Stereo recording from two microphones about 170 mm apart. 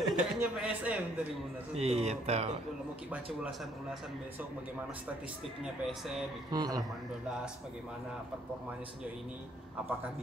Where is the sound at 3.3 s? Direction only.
Centre (ahead or behind).